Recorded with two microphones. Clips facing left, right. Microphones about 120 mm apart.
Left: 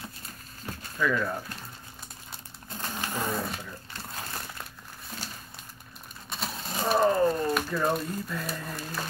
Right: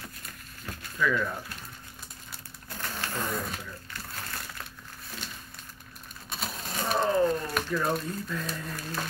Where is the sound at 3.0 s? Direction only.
15° left (ahead or behind).